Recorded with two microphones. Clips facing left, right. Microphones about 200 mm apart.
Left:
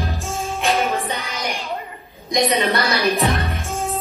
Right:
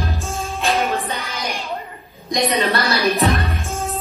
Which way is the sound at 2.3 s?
15° left (ahead or behind).